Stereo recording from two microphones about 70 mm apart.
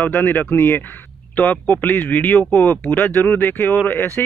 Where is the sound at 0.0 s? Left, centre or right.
Left.